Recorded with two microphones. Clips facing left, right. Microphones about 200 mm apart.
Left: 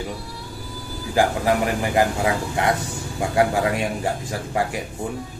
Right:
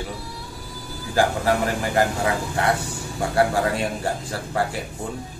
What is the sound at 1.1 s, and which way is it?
Speech, 15° left (ahead or behind).